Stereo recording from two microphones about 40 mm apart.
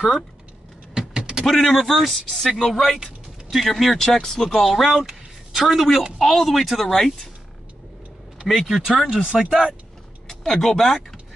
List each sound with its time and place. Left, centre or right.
0.9 s power windows: centre
1.4 s speech: centre
4.6 s speech: centre
8.5 s speech: centre
8.8 s speech: centre
10.2 s speech: centre